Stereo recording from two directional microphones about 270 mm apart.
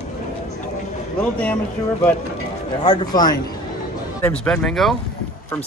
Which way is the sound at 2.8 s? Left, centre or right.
Centre.